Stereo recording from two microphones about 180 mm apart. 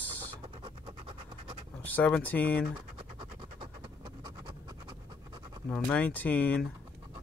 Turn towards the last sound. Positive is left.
turn(degrees=10)  # may be behind; listen again after turning